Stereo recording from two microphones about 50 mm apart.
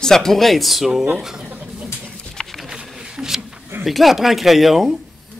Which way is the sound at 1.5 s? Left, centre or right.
Right.